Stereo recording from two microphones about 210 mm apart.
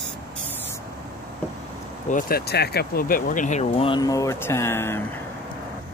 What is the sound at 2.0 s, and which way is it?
Speech, 45° left (ahead or behind).